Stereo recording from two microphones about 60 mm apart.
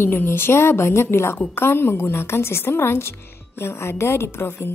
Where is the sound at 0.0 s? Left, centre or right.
Left.